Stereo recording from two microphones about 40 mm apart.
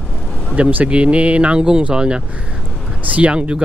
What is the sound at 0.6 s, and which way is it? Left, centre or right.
Speech, right.